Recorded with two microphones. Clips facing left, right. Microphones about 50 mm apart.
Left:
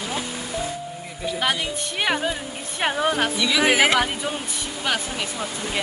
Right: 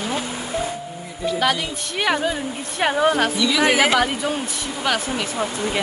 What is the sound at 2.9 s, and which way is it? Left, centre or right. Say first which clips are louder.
Speech: right 5 dB; centre.